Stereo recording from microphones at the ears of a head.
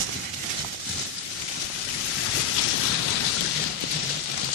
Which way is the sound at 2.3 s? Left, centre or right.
Left.